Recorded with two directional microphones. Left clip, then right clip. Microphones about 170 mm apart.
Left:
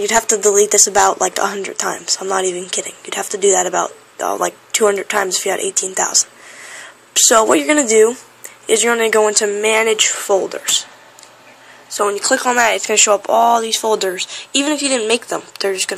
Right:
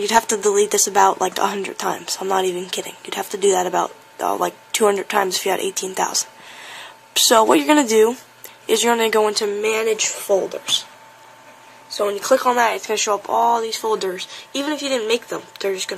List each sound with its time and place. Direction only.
0.0 s speech: 20° right (ahead or behind)
9.3 s speech: centre (ahead or behind)
10.2 s speech: 30° left (ahead or behind)
11.9 s speech: centre (ahead or behind)